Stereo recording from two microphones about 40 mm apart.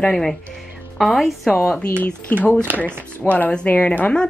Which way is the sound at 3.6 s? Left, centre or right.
Left.